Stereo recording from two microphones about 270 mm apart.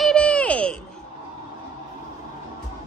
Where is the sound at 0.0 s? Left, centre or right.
Centre.